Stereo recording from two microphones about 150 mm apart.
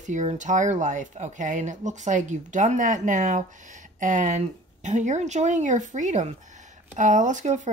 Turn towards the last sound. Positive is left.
turn(degrees=-55)  # may be behind; listen again after turning